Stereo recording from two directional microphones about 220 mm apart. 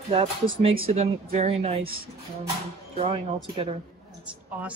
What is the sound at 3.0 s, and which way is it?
Speech, 25° right (ahead or behind).